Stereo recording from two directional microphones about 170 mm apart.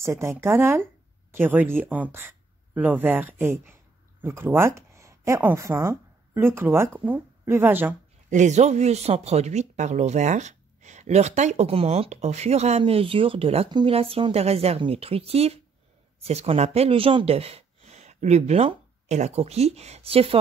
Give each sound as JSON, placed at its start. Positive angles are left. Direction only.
{"t": 0.0, "sound": "speech", "side_deg": -15}
{"t": 8.3, "sound": "speech", "side_deg": -45}